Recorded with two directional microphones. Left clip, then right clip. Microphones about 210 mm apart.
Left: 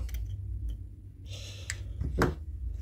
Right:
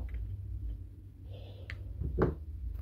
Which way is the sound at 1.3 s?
15° left (ahead or behind).